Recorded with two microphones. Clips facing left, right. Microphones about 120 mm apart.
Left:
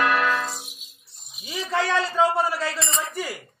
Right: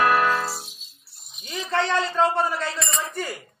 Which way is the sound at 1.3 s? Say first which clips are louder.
Right 1 dB; 5° left (ahead or behind).